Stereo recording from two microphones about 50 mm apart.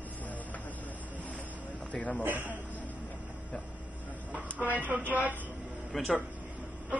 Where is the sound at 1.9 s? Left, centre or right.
Left.